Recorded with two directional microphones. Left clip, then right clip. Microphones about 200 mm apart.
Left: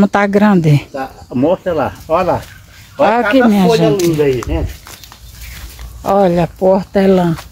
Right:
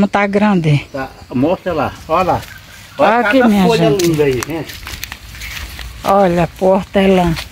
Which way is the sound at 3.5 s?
Centre (ahead or behind).